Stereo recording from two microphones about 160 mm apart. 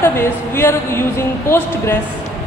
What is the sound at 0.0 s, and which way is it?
Speech, 15° left (ahead or behind).